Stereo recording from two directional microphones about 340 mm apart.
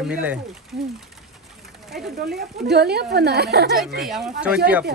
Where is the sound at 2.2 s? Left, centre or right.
Right.